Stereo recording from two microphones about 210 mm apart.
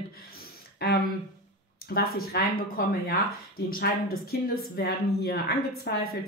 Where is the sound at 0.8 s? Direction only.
50° left (ahead or behind).